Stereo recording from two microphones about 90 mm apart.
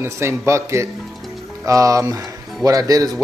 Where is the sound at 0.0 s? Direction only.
30° right (ahead or behind).